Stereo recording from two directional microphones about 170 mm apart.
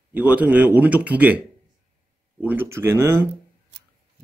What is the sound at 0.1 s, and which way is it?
Speech, 10° right (ahead or behind).